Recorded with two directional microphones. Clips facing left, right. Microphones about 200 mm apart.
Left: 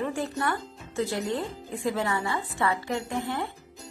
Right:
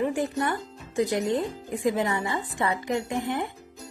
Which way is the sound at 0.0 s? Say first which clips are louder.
Right 3 dB; 15° right (ahead or behind).